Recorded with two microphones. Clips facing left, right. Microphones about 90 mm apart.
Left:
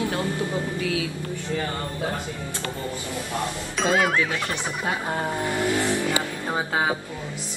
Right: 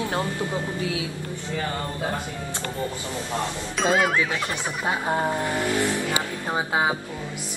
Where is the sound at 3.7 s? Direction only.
Centre (ahead or behind).